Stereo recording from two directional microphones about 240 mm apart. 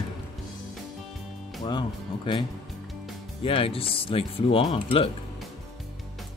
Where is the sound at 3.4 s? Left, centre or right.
Left.